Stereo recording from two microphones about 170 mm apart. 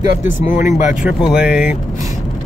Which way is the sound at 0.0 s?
50° left (ahead or behind).